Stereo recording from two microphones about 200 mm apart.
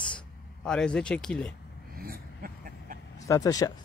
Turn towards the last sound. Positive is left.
turn(degrees=20)  # may be behind; listen again after turning